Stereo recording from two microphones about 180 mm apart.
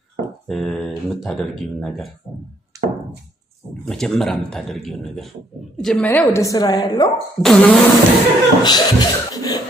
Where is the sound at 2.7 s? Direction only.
20° right (ahead or behind).